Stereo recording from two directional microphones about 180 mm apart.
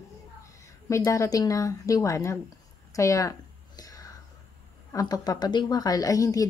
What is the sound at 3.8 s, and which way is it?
Whispering, 20° left (ahead or behind).